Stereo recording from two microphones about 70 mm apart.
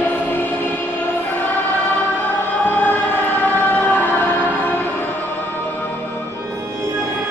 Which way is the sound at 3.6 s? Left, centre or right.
Left.